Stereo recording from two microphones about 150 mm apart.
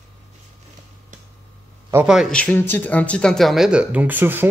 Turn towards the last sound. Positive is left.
turn(degrees=-15)  # may be behind; listen again after turning